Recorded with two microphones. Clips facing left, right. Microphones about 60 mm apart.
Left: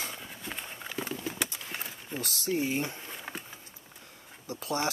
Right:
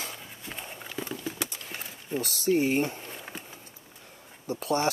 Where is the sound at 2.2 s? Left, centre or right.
Left.